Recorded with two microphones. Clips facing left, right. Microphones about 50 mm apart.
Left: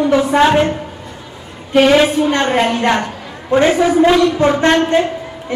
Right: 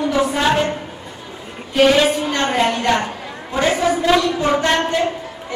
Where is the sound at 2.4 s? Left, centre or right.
Left.